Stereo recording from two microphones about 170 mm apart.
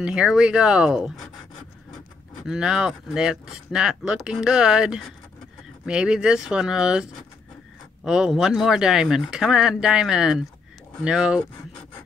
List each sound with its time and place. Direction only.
0.0 s speech: 5° right (ahead or behind)
2.4 s speech: 5° right (ahead or behind)